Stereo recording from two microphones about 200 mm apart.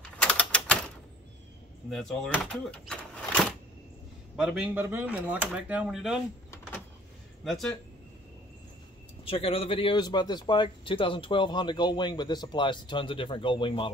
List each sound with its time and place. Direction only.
0.2 s typewriter: 5° left (ahead or behind)
1.9 s speech: centre (ahead or behind)
4.4 s speech: 5° right (ahead or behind)
9.2 s a man's voice: 30° left (ahead or behind)